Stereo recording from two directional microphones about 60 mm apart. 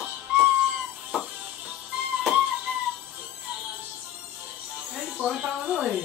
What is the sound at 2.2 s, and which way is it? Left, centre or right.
Music, centre.